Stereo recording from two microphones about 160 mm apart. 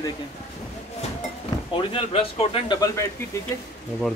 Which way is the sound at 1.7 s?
35° left (ahead or behind).